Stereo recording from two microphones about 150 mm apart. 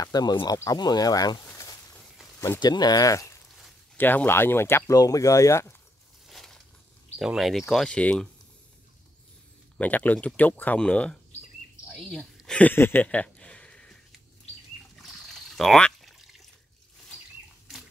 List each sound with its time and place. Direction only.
0.0 s speech: 25° left (ahead or behind)
3.9 s speech: 10° left (ahead or behind)
6.2 s a sound: centre (ahead or behind)
7.2 s speech: centre (ahead or behind)
9.8 s speech: 10° left (ahead or behind)
12.4 s a sound: 5° left (ahead or behind)
15.0 s trickle: centre (ahead or behind)